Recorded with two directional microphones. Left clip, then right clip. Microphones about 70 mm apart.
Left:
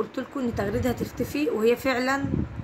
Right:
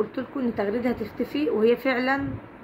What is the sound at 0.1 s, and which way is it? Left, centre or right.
A woman's voice, left.